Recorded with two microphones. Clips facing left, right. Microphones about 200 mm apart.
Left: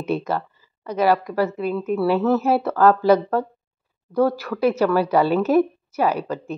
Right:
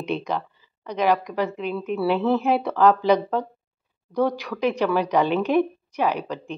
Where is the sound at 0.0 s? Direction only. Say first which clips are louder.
Left 3 dB; 5° left (ahead or behind).